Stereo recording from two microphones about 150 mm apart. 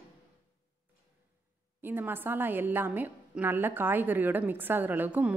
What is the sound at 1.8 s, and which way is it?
A woman's voice, 15° right (ahead or behind).